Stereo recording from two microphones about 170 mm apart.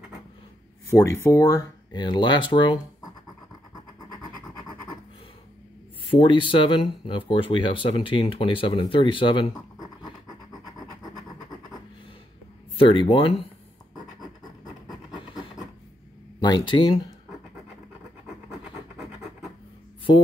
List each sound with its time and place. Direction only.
0.8 s speech: 15° left (ahead or behind)
4.1 s scratch: 25° left (ahead or behind)
6.0 s speech: 30° left (ahead or behind)
12.7 s speech: 30° left (ahead or behind)
16.3 s speech: 25° left (ahead or behind)